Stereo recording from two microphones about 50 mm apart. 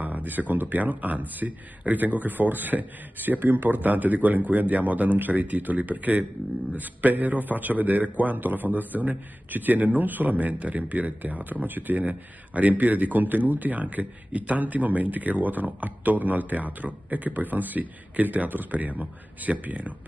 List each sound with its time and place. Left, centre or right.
0.0 s speech: right